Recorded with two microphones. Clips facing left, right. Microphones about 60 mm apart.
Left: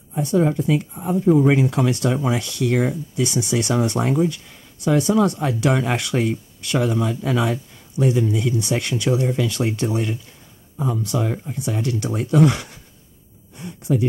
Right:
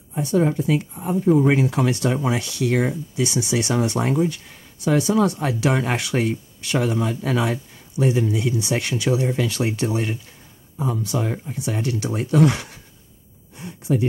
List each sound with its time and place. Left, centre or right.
0.1 s a woman's voice: centre
0.9 s speech: centre
1.5 s speech: centre
7.5 s speech: centre